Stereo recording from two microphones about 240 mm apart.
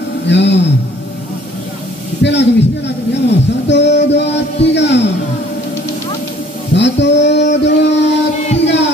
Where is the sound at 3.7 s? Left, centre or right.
Left.